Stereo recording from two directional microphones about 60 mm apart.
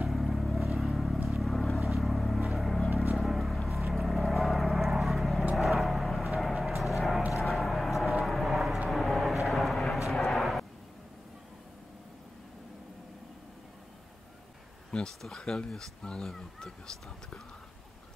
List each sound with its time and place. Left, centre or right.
0.0 s vehicle: centre
14.9 s speech: centre